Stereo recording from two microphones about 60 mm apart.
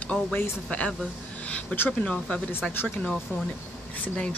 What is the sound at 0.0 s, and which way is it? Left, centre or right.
Speech, left.